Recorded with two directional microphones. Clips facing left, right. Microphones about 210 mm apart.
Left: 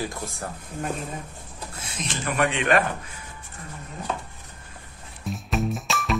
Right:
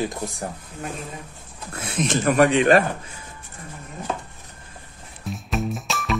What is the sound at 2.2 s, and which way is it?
Speech, 40° right (ahead or behind).